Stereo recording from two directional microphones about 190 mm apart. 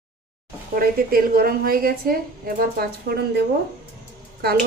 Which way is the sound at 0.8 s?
50° right (ahead or behind).